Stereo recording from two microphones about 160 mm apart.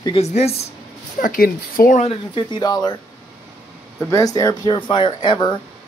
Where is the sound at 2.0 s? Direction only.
35° left (ahead or behind).